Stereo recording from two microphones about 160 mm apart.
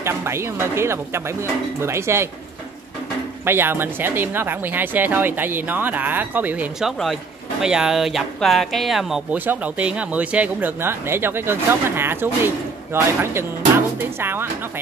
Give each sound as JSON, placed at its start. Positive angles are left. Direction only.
{"t": 0.0, "sound": "speech", "side_deg": -15}
{"t": 3.4, "sound": "speech", "side_deg": -15}